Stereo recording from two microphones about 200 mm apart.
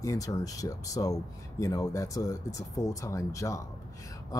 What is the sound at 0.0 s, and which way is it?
Speech, 15° left (ahead or behind).